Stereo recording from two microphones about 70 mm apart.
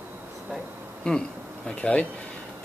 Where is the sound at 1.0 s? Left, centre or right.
Centre.